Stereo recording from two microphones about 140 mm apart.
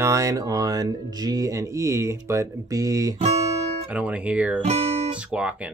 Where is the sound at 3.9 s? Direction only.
10° right (ahead or behind).